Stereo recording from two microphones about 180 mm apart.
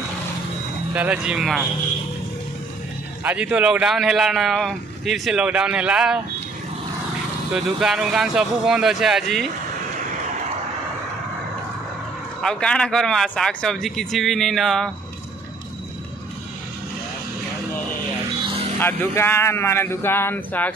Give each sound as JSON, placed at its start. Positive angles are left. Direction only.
{"t": 0.9, "sound": "a man's voice", "side_deg": -5}
{"t": 3.3, "sound": "a man's voice", "side_deg": -5}
{"t": 7.5, "sound": "a man's voice", "side_deg": 0}
{"t": 12.4, "sound": "a man's voice", "side_deg": 5}
{"t": 18.4, "sound": "vehicle", "side_deg": -30}
{"t": 18.8, "sound": "speech", "side_deg": 10}